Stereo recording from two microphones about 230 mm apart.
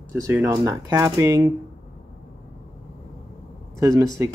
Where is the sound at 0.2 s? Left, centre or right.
Centre.